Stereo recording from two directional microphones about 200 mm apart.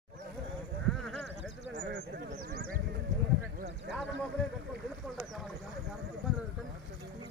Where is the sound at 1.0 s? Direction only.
5° left (ahead or behind).